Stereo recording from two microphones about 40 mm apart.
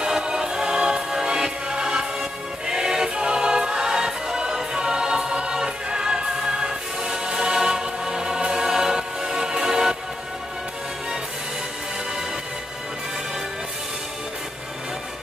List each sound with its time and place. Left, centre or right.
0.0 s music: centre